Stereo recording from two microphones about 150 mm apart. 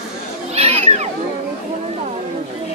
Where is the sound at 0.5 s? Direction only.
45° right (ahead or behind).